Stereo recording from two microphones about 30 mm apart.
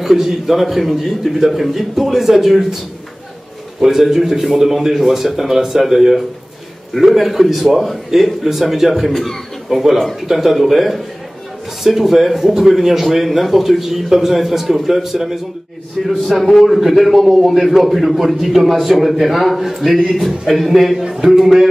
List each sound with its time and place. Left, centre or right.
0.0 s a man's voice: centre
3.8 s a man's voice: centre
8.5 s a man's voice: centre
16.3 s a man's voice: centre